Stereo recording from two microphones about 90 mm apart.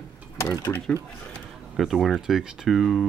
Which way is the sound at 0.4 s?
35° left (ahead or behind).